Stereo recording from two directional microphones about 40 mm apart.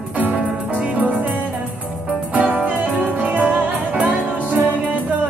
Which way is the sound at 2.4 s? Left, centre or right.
Right.